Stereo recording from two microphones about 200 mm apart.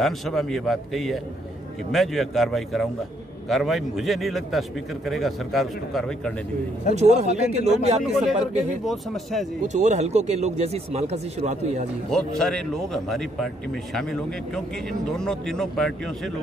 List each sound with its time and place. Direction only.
0.0 s a man's voice: centre (ahead or behind)
7.0 s a man's voice: 35° right (ahead or behind)
8.0 s a man's voice: centre (ahead or behind)
9.7 s a man's voice: 35° right (ahead or behind)
12.1 s a man's voice: 5° left (ahead or behind)